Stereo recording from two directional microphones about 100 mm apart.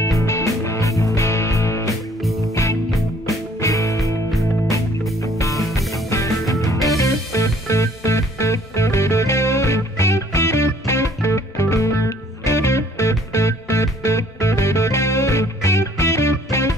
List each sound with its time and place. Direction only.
0.2 s music: 30° left (ahead or behind)
2.2 s music: centre (ahead or behind)
2.5 s music: 35° left (ahead or behind)
5.2 s music: 35° left (ahead or behind)